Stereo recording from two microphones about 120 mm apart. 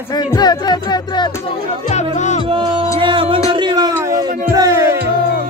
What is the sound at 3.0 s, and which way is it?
Music, 45° right (ahead or behind).